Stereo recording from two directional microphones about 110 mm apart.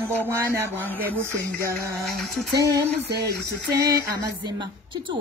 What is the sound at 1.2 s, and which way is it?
Music, 25° right (ahead or behind).